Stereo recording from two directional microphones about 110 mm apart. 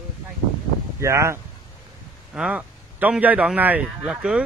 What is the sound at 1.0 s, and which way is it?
Speech, 25° right (ahead or behind).